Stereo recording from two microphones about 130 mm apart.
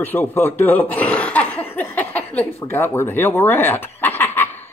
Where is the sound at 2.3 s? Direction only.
15° left (ahead or behind).